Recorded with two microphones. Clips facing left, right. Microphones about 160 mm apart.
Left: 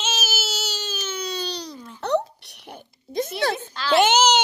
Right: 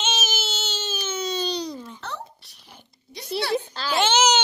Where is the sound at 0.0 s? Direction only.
5° left (ahead or behind).